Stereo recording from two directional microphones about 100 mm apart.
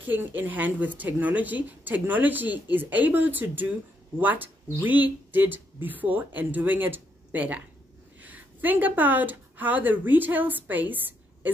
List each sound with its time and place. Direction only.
0.0 s speech: 20° right (ahead or behind)